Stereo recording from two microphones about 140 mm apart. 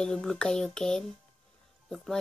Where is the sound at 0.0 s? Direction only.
5° left (ahead or behind).